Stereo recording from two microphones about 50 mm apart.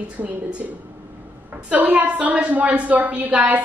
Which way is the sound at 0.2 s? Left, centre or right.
Right.